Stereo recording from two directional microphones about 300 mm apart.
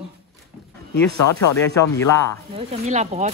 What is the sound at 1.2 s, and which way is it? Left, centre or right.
Speech, left.